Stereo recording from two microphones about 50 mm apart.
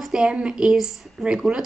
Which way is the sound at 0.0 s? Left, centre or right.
Centre.